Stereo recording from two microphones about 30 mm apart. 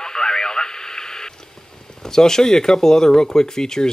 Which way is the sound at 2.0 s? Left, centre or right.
Centre.